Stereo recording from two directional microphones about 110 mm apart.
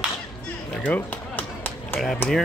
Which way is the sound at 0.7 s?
10° left (ahead or behind).